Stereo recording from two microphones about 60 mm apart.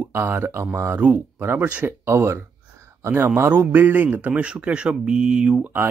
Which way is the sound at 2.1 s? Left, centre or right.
Right.